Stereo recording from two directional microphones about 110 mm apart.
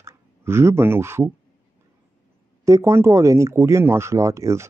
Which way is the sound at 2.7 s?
25° right (ahead or behind).